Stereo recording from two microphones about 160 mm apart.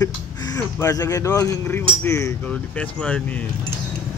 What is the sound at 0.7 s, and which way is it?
Speech, 20° left (ahead or behind).